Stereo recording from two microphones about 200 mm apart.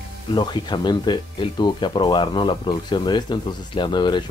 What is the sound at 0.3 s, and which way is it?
Speech, 20° left (ahead or behind).